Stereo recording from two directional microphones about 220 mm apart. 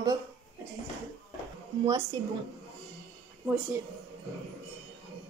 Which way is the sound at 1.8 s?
15° right (ahead or behind).